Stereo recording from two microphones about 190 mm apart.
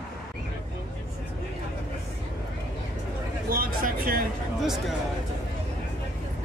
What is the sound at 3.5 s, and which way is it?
Speech, 50° right (ahead or behind).